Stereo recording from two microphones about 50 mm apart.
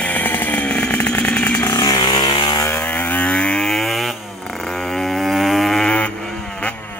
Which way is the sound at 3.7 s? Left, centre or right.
Centre.